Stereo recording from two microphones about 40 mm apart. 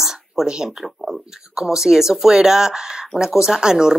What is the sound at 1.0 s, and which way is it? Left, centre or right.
A woman's voice, centre.